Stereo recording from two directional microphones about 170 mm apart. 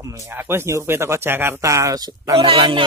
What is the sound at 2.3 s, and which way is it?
Speech, 35° right (ahead or behind).